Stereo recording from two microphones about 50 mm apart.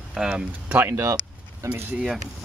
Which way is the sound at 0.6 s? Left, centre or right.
Right.